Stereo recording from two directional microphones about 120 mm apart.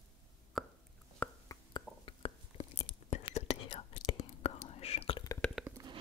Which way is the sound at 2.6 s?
60° left (ahead or behind).